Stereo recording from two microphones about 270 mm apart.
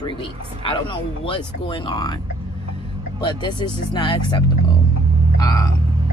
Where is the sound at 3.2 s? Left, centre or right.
Centre.